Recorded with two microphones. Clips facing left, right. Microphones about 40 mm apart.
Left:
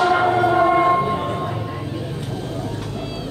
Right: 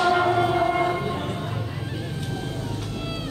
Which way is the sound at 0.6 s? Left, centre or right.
Left.